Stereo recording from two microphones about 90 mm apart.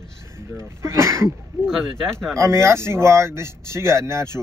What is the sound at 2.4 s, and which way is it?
Speech, 30° right (ahead or behind).